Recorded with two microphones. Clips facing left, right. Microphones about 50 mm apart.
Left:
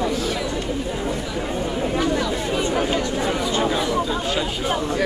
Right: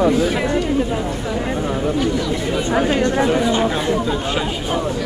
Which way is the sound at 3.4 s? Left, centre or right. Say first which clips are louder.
Right 4 dB; right.